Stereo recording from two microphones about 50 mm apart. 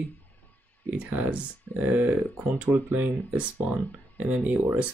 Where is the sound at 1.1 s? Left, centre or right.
Right.